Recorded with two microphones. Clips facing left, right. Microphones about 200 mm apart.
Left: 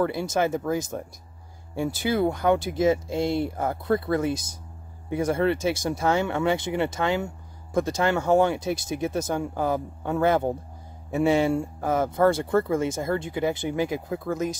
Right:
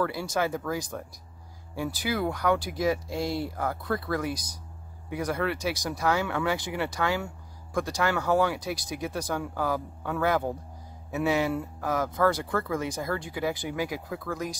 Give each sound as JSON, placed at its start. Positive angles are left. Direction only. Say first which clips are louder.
{"t": 0.0, "sound": "speech", "louder": "left 4 dB", "side_deg": 25}